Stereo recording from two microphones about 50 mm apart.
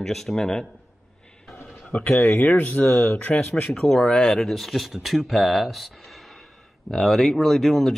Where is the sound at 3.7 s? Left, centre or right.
Centre.